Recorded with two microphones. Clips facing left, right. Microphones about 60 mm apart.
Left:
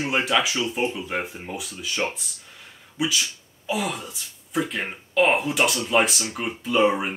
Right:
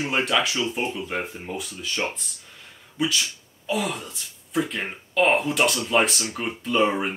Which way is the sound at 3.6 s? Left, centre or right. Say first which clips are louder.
Even; centre.